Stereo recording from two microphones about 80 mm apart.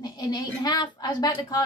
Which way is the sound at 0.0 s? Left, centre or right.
Left.